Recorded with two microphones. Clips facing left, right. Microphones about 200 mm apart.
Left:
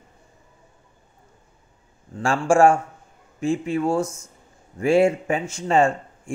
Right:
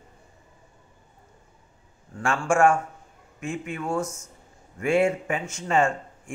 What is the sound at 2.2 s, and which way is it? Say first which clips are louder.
Speech: left 4 dB; 30° left (ahead or behind).